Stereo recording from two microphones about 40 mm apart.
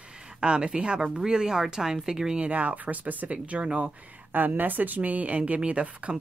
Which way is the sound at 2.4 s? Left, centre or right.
Right.